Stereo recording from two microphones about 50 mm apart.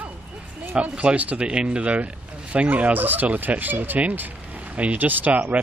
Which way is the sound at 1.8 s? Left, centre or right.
Right.